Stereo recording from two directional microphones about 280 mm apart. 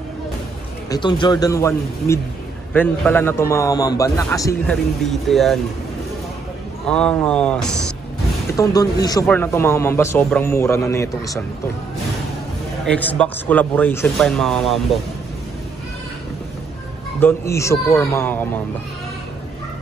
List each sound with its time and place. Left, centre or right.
0.8 s a man's voice: centre
6.9 s speech: centre
8.5 s a man's voice: centre
12.8 s speech: centre
17.2 s a man's voice: centre